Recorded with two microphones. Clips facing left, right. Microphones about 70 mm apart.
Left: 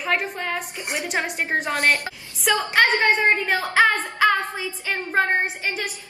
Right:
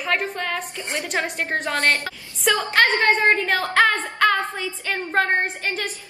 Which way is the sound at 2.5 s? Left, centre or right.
Centre.